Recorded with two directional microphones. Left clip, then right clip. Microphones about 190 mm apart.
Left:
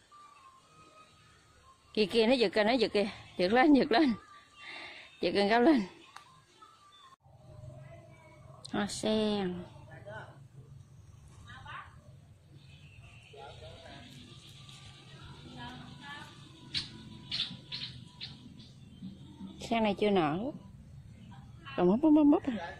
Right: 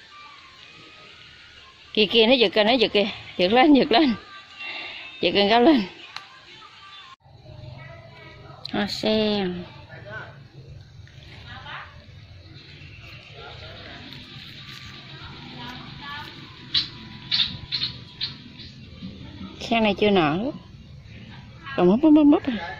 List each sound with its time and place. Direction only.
1.9 s a woman's voice: centre (ahead or behind)
4.6 s a sound: centre (ahead or behind)
8.6 s a woman's voice: centre (ahead or behind)
19.6 s a woman's voice: 5° right (ahead or behind)
21.7 s a woman's voice: 5° right (ahead or behind)